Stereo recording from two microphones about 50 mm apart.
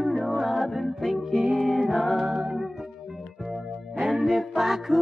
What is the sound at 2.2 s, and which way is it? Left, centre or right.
Music, centre.